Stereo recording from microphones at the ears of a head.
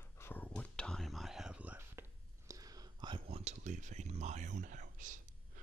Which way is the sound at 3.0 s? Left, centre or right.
Right.